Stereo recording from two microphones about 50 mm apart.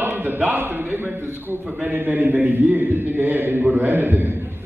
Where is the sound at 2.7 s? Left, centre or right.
Right.